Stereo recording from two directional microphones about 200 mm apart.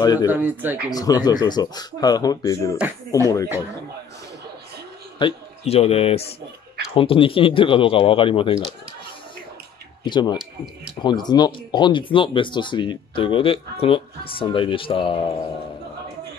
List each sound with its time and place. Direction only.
0.0 s speech: 20° left (ahead or behind)
0.3 s speech: 10° right (ahead or behind)
0.8 s speech: 20° left (ahead or behind)
5.2 s speech: 30° left (ahead or behind)
10.0 s speech: 25° left (ahead or behind)
10.3 s speech: centre (ahead or behind)
11.0 s speech: 20° left (ahead or behind)